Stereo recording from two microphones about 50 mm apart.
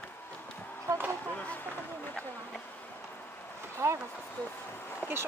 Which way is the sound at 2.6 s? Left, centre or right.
Left.